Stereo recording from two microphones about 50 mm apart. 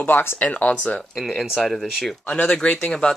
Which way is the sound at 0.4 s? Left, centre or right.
Left.